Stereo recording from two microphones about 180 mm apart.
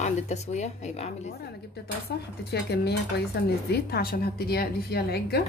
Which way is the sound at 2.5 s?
65° left (ahead or behind).